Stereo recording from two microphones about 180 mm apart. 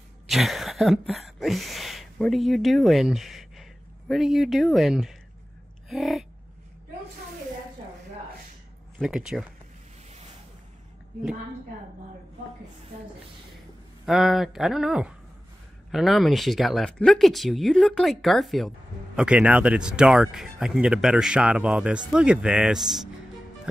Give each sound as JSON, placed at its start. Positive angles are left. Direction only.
{"t": 0.3, "sound": "a sound", "side_deg": 0}
{"t": 4.1, "sound": "speech", "side_deg": 0}
{"t": 8.9, "sound": "speech", "side_deg": 0}
{"t": 14.0, "sound": "speech", "side_deg": 0}